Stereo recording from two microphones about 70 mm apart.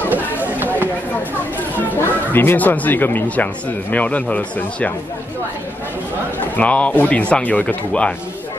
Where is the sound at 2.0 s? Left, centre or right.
Left.